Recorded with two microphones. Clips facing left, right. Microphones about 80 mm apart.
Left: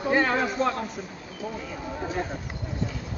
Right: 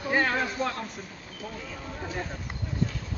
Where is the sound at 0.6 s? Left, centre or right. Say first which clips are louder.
Left 5 dB; centre.